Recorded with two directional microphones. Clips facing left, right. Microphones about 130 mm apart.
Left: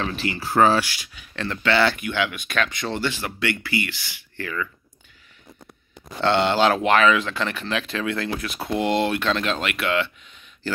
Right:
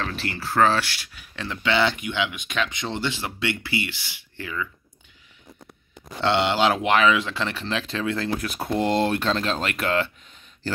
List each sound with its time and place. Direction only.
0.0 s speech: 5° left (ahead or behind)
1.3 s speech: 10° right (ahead or behind)
6.2 s speech: 20° right (ahead or behind); by 10.1 s 40° right (ahead or behind)